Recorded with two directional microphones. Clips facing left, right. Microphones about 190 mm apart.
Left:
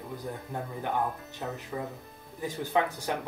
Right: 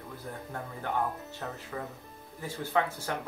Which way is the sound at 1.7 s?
15° left (ahead or behind).